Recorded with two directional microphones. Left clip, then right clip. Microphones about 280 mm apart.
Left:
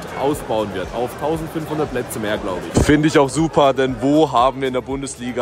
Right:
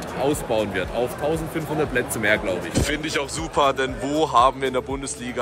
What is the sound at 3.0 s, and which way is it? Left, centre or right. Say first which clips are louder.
Speech: left 11 dB; left.